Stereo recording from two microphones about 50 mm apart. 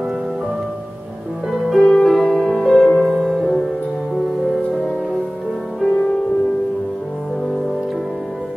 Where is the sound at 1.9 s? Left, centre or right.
Centre.